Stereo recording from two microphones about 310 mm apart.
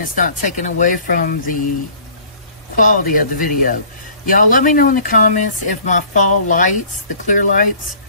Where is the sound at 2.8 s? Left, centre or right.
Left.